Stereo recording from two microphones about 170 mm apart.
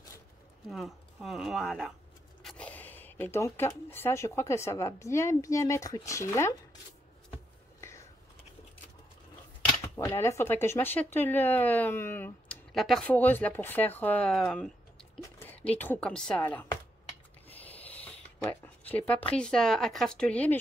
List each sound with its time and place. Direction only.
0.7 s speech: centre (ahead or behind); by 6.5 s 15° left (ahead or behind)
9.9 s speech: 15° left (ahead or behind)
12.7 s speech: centre (ahead or behind)
15.3 s a sound: 10° left (ahead or behind)
15.7 s speech: 10° left (ahead or behind)